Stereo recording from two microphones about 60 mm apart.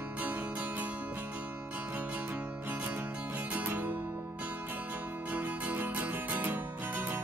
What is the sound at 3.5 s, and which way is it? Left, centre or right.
Music, right.